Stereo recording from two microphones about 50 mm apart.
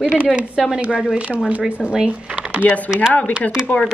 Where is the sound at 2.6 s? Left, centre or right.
Left.